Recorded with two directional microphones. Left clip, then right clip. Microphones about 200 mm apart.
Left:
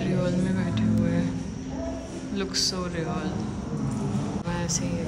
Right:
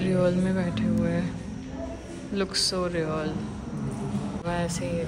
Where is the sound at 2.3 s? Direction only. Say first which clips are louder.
Right 1 dB; centre (ahead or behind).